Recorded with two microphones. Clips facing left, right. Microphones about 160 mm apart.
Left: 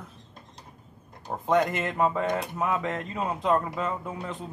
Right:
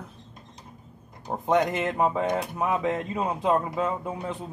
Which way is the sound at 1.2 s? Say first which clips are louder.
Right 1 dB; 15° right (ahead or behind).